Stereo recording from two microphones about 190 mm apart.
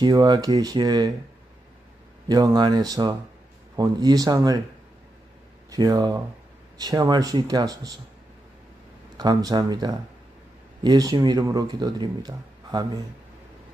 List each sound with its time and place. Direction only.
0.0 s speech: 20° right (ahead or behind)
2.2 s speech: 20° right (ahead or behind)
5.7 s speech: 20° right (ahead or behind)
9.1 s speech: 20° right (ahead or behind)